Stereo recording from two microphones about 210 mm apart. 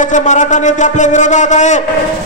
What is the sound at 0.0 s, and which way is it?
A man's voice, 35° left (ahead or behind).